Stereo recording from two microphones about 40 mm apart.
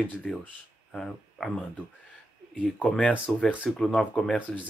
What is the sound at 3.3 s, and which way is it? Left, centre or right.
Speech, left.